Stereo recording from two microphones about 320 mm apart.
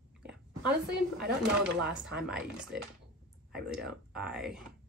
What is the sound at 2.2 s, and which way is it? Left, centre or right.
Speech, centre.